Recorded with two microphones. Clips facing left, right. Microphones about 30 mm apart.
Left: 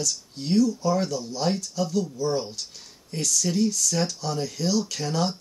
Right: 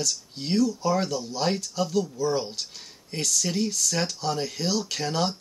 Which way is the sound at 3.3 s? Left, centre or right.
Right.